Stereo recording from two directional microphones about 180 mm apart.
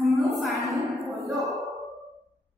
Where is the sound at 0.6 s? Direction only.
15° right (ahead or behind).